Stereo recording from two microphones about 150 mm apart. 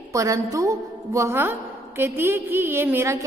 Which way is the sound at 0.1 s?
20° right (ahead or behind).